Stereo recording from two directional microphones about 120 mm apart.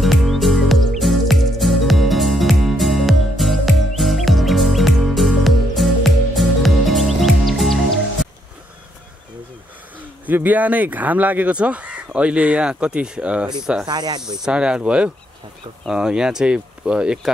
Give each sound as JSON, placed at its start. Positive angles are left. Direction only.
{"t": 0.0, "sound": "music", "side_deg": 0}
{"t": 9.9, "sound": "speech", "side_deg": -15}
{"t": 13.8, "sound": "speech", "side_deg": -35}
{"t": 14.4, "sound": "speech", "side_deg": -5}